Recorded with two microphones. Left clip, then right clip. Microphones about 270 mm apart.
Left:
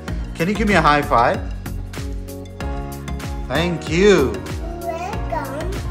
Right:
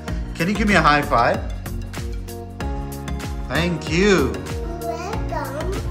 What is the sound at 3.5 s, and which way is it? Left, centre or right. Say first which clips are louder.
Speech: left 2 dB; centre.